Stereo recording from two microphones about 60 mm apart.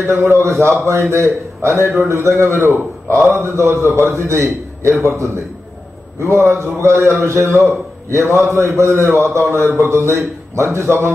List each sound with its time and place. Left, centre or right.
0.0 s a man's voice: right